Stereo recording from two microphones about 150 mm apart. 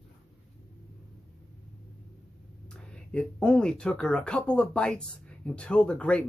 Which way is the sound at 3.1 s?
5° left (ahead or behind).